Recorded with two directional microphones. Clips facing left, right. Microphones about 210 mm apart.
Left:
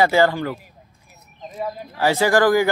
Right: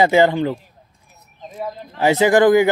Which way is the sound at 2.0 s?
20° right (ahead or behind).